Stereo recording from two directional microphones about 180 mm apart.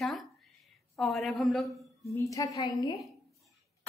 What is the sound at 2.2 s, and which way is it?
Speech, 20° left (ahead or behind).